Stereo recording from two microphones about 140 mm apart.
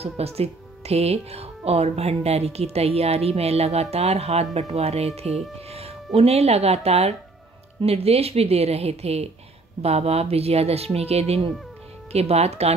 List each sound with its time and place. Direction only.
0.0 s speech: 45° right (ahead or behind)
5.7 s music: 50° right (ahead or behind)
6.1 s speech: 50° right (ahead or behind)